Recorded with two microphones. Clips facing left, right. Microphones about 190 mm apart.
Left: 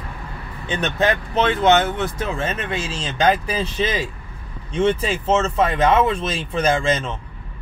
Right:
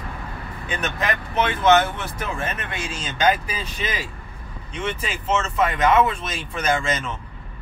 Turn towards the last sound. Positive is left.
turn(degrees=30)  # may be behind; listen again after turning